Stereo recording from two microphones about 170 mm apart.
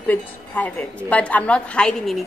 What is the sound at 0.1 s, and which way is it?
A woman's voice, 10° left (ahead or behind).